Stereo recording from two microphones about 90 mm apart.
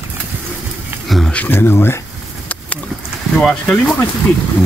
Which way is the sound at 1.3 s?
25° left (ahead or behind).